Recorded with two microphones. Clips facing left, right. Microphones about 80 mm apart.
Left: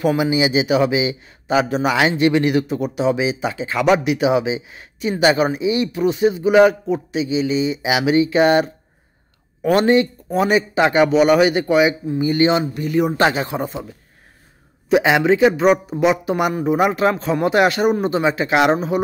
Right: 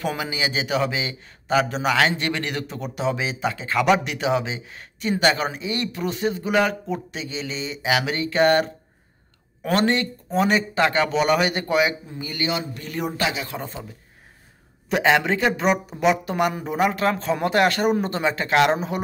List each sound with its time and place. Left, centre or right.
0.0 s a man's voice: centre
12.2 s speech: left
12.7 s a man's voice: centre
13.2 s speech: left
14.9 s a man's voice: centre